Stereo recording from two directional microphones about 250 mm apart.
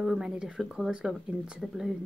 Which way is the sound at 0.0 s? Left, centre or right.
Centre.